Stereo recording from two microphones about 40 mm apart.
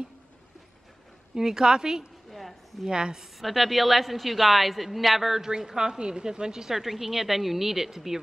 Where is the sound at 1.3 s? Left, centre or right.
Centre.